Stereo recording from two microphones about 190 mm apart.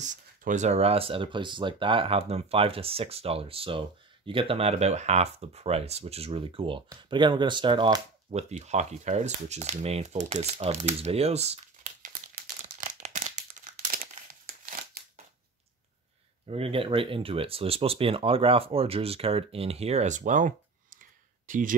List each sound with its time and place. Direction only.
0.0 s speech: 40° right (ahead or behind)
12.6 s crumpling: 40° right (ahead or behind)
16.4 s speech: 30° right (ahead or behind)
21.0 s clicking: 45° right (ahead or behind)